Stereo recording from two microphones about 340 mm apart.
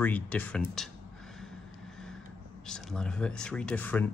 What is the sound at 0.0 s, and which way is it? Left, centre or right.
Speech, centre.